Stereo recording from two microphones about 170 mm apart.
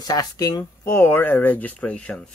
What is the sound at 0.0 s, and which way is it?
Speech, 20° left (ahead or behind).